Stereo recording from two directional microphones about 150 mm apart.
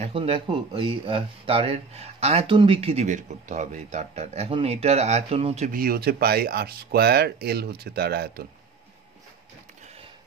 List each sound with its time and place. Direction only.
0.0 s speech: 40° right (ahead or behind)
5.7 s speech: 75° right (ahead or behind)